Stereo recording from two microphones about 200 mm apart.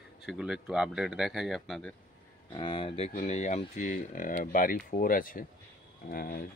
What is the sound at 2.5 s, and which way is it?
Speech, 25° left (ahead or behind).